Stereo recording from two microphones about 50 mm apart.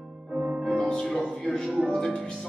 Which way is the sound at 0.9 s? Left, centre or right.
Centre.